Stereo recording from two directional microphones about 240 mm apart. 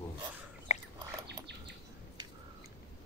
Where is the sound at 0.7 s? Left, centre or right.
Left.